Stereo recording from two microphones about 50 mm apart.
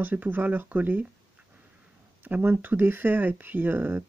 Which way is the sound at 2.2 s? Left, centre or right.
Right.